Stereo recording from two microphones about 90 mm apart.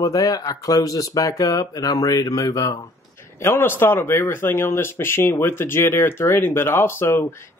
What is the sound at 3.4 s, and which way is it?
Speech, 25° left (ahead or behind).